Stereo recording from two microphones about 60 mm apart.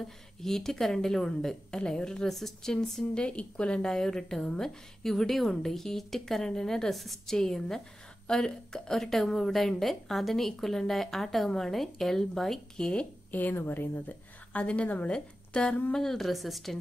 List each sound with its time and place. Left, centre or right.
0.4 s speech: centre
3.2 s a woman's voice: centre
13.3 s a woman's voice: left; by 16.8 s centre